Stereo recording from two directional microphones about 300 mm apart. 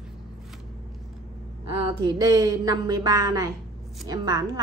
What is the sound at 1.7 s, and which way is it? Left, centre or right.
A woman's voice, centre.